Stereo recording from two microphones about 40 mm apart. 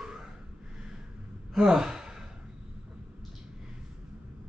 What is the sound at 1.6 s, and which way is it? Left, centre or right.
Speech, centre.